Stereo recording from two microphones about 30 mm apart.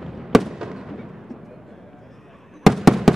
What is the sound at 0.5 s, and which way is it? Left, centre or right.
Fireworks, centre.